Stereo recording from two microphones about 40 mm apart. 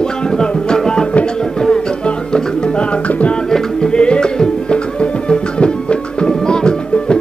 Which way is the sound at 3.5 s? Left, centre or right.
Centre.